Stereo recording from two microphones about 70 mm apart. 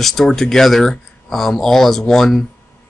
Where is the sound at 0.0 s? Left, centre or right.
Centre.